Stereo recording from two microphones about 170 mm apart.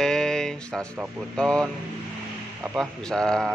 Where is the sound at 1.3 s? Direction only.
5° left (ahead or behind).